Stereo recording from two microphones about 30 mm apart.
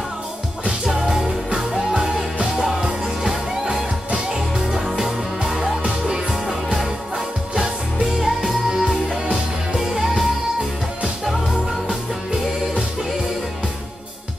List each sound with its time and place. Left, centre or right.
0.8 s music: right
8.0 s music: centre